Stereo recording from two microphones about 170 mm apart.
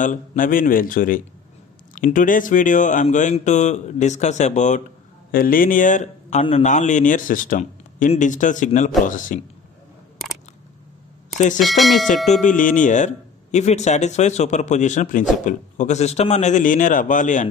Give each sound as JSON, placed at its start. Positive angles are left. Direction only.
{"t": 0.0, "sound": "speech", "side_deg": 50}
{"t": 5.3, "sound": "speech", "side_deg": 55}
{"t": 11.3, "sound": "speech", "side_deg": 45}
{"t": 11.6, "sound": "speech", "side_deg": 0}
{"t": 12.3, "sound": "speech", "side_deg": 45}